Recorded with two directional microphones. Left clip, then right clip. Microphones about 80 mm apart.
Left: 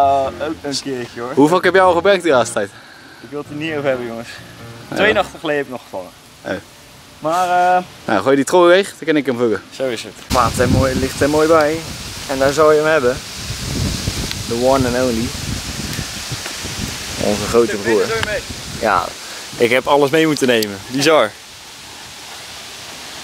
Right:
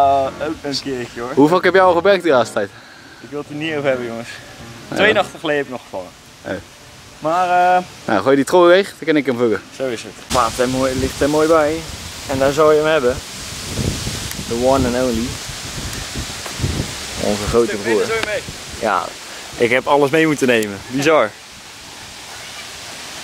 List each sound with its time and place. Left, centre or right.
0.0 s speech: centre
6.5 s speech: centre
9.8 s speech: left
10.3 s speech: centre
14.6 s speech: centre
17.2 s speech: centre
17.6 s speech: centre
18.8 s speech: centre